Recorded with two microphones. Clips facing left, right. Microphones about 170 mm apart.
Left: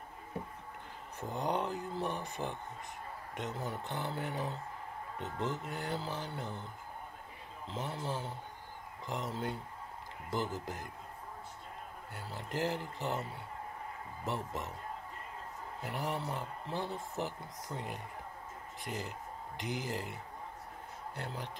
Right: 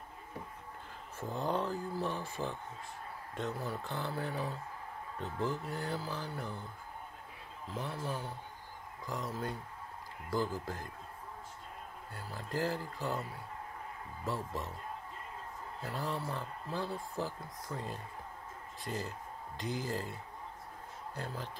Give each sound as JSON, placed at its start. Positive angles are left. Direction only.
{"t": 1.3, "sound": "speech", "side_deg": 20}
{"t": 12.2, "sound": "speech", "side_deg": 20}
{"t": 15.8, "sound": "speech", "side_deg": 20}